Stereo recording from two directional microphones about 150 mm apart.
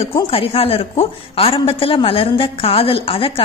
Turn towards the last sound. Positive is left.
turn(degrees=40)  # may be behind; listen again after turning